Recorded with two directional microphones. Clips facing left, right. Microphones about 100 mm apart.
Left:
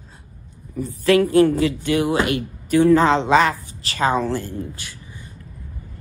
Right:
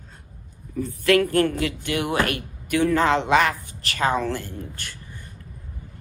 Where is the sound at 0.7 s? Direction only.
15° left (ahead or behind).